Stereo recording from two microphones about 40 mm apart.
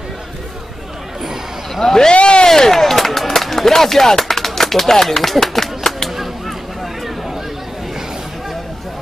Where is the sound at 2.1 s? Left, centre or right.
Left.